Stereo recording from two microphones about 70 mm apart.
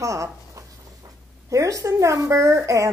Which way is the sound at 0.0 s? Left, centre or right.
Right.